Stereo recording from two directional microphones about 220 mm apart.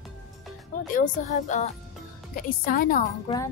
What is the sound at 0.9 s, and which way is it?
Speech, 30° left (ahead or behind).